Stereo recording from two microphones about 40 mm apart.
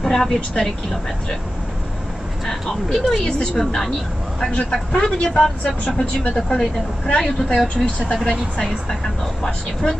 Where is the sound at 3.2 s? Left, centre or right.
Centre.